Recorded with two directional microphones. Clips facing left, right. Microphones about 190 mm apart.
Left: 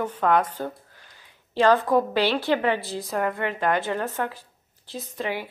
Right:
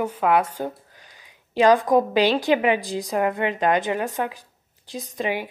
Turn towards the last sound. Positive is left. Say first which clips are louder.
# right 3 dB
turn(degrees=-15)  # may be behind; listen again after turning